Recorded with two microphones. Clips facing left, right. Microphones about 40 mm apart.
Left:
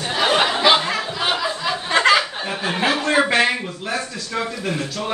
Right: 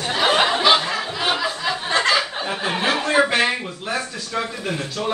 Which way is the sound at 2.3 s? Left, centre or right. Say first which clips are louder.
Even; centre.